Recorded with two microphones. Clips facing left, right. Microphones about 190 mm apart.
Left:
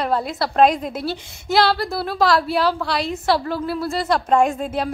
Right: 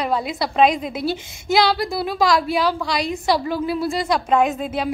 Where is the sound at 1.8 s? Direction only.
15° right (ahead or behind).